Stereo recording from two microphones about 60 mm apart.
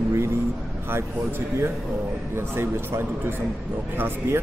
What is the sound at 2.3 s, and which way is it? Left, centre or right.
Speech, right.